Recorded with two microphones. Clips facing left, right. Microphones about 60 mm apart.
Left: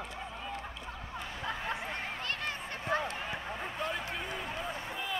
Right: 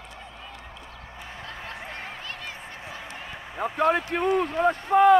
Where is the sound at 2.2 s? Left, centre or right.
Left.